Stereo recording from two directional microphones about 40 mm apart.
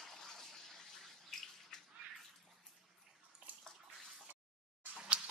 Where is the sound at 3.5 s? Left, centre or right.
Right.